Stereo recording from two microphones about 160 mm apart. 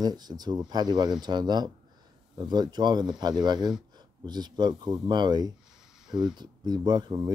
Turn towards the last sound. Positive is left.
turn(degrees=-25)  # may be behind; listen again after turning